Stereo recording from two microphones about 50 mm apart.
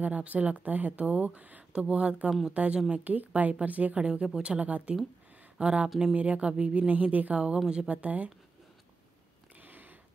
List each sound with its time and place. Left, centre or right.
0.0 s a woman's voice: right
7.3 s speech: centre
7.9 s speech: right
9.6 s a sound: right